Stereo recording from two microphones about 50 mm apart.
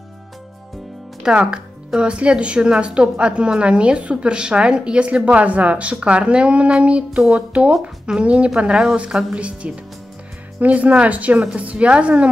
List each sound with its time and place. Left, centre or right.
1.2 s speech: centre